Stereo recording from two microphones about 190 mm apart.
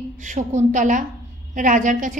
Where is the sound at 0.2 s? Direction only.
40° right (ahead or behind).